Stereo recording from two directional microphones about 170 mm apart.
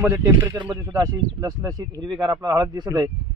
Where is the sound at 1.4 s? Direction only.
25° right (ahead or behind).